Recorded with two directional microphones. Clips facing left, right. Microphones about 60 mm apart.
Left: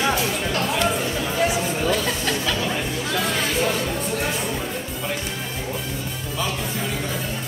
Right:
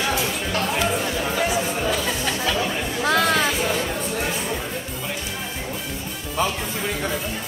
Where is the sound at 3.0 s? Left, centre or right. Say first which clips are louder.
Right 9 dB; right.